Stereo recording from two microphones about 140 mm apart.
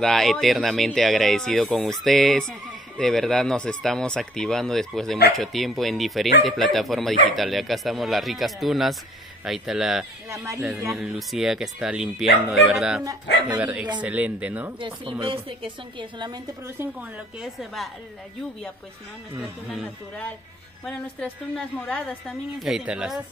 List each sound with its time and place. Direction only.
0.0 s speech: centre (ahead or behind)
10.3 s speech: 20° right (ahead or behind)
11.0 s speech: centre (ahead or behind)
13.0 s speech: 25° right (ahead or behind)
13.6 s speech: 10° right (ahead or behind)
14.8 s a woman's voice: 35° right (ahead or behind)
16.6 s speech: 15° right (ahead or behind)
17.4 s speech: centre (ahead or behind)
20.8 s a woman's voice: 5° left (ahead or behind)
22.6 s speech: 5° right (ahead or behind)